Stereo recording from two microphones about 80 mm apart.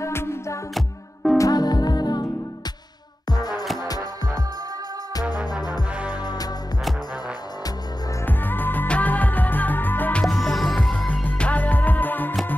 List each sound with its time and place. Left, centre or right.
0.0 s music: left
0.7 s music: centre
1.4 s music: left
3.3 s music: left
5.5 s music: left
8.3 s music: left
10.2 s music: centre
11.1 s music: centre